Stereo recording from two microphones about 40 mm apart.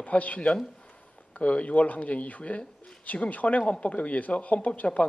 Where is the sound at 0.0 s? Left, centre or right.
Left.